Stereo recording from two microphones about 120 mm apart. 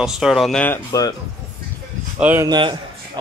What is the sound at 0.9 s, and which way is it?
Speech, 30° left (ahead or behind).